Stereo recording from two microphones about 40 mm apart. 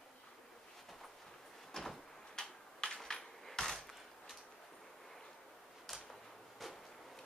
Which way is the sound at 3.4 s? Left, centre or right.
Centre.